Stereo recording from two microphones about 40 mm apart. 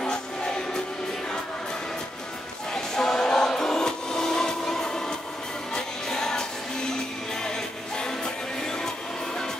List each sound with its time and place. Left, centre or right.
0.0 s music: centre
2.7 s a sound: centre
5.8 s music: centre